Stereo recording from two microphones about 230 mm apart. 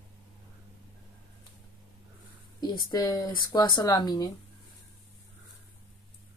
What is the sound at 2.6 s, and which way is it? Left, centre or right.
Speech, centre.